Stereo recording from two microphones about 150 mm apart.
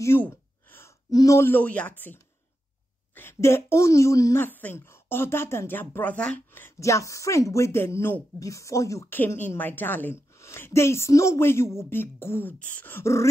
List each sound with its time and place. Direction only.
0.0 s gasp: 15° left (ahead or behind)
1.1 s speech: 20° left (ahead or behind)
3.2 s speech: 15° left (ahead or behind)